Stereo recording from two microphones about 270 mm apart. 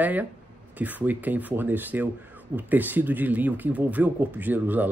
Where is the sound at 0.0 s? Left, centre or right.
Centre.